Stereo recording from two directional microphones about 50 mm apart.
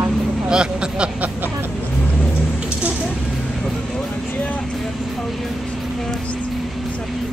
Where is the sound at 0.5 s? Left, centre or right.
Centre.